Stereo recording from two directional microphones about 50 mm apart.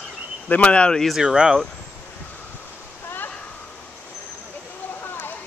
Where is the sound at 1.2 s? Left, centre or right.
Centre.